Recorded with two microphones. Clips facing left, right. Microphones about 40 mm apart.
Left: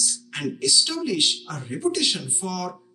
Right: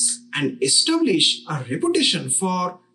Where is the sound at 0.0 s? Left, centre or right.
Right.